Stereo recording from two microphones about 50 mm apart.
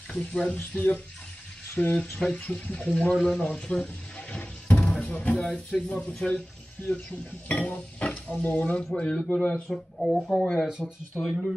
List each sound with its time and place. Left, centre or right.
0.1 s speech: centre
0.6 s speech: left
1.8 s speech: left
2.4 s speech: left
4.3 s music: left
5.0 s speech: left
5.4 s speech: centre
6.8 s speech: left
8.9 s speech: centre